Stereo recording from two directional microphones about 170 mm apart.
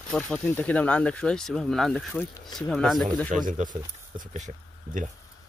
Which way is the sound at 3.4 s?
50° right (ahead or behind).